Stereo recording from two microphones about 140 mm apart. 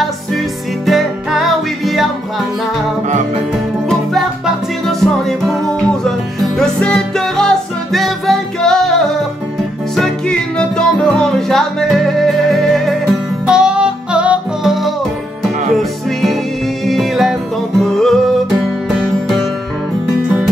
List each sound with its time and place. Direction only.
0.8 s music: centre (ahead or behind)
3.1 s music: 60° right (ahead or behind)
3.5 s music: centre (ahead or behind)
9.9 s music: 5° left (ahead or behind)